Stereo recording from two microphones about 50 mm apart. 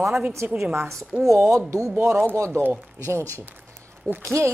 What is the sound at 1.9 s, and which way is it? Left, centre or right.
Speech, right.